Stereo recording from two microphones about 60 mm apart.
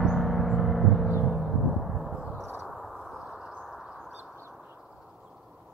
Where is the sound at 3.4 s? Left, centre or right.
Centre.